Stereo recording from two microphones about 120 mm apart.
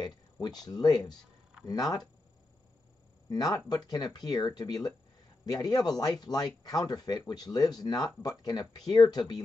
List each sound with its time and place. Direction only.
0.0 s speech: 35° left (ahead or behind)
3.3 s speech: 30° left (ahead or behind)